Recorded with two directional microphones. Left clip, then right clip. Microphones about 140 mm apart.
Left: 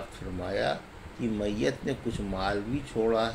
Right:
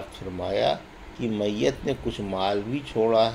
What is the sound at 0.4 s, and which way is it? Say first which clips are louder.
Speech: right 6 dB; 25° right (ahead or behind).